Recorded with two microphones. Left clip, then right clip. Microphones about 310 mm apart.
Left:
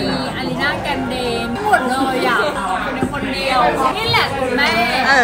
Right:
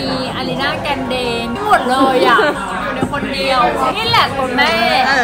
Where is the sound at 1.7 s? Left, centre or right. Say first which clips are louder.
Right 5 dB; centre.